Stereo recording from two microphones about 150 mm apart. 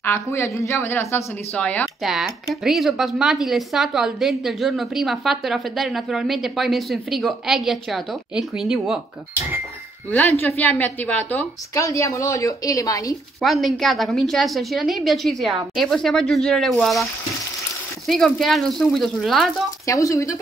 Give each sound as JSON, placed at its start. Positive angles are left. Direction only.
{"t": 0.0, "sound": "speech", "side_deg": 15}
{"t": 2.0, "sound": "speech", "side_deg": -5}
{"t": 10.4, "sound": "a woman's voice", "side_deg": 10}
{"t": 13.4, "sound": "speech", "side_deg": 0}
{"t": 19.9, "sound": "a woman's voice", "side_deg": 20}